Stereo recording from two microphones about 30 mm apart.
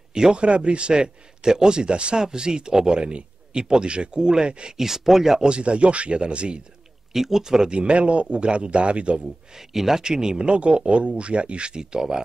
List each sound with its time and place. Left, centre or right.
0.1 s speech: right
0.4 s a man's voice: right
2.1 s speech: right
4.7 s speech: centre
5.4 s a man's voice: right
7.2 s speech: centre
7.7 s a man's voice: right
9.8 s speech: centre
10.0 s speech: right
10.5 s a man's voice: right